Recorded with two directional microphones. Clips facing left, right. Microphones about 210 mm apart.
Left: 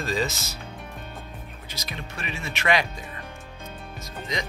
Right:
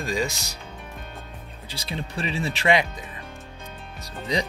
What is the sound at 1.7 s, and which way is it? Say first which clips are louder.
Speech: right 5 dB; 30° right (ahead or behind).